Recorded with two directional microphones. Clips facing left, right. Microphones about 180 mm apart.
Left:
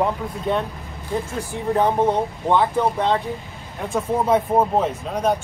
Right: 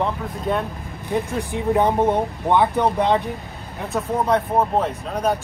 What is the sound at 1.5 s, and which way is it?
Speech, 15° right (ahead or behind).